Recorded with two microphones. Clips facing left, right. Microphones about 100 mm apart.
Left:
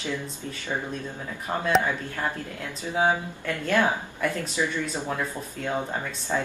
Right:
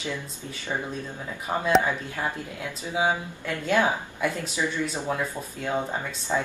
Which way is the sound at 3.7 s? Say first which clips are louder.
Even; 10° right (ahead or behind).